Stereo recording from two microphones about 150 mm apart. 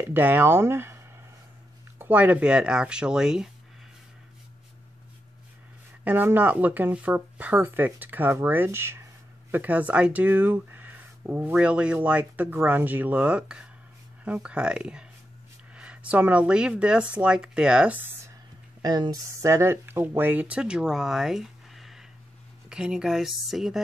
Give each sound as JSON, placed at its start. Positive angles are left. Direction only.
{"t": 0.1, "sound": "speech", "side_deg": -15}
{"t": 6.0, "sound": "speech", "side_deg": -10}
{"t": 18.8, "sound": "a woman's voice", "side_deg": -25}